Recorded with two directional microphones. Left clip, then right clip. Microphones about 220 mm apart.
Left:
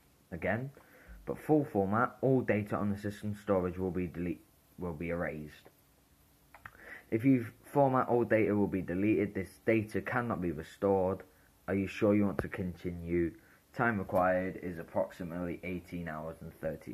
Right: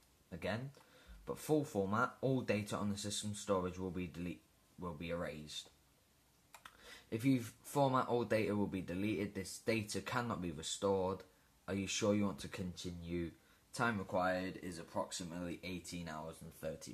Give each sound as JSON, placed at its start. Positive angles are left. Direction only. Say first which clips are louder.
{"t": 0.3, "sound": "speech", "louder": "left 8 dB", "side_deg": -35}
{"t": 6.8, "sound": "speech", "louder": "left 8 dB", "side_deg": -45}